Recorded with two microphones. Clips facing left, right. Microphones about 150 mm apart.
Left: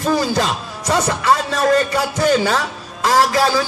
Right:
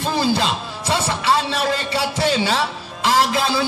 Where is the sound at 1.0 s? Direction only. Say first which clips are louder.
Left 3 dB; 45° left (ahead or behind).